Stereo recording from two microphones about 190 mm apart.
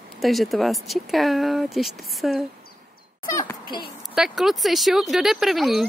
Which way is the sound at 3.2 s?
15° left (ahead or behind).